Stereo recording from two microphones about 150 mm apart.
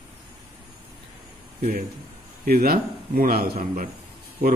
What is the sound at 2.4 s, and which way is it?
Speech, 90° right.